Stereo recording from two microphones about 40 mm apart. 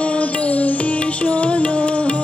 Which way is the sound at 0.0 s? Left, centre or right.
Left.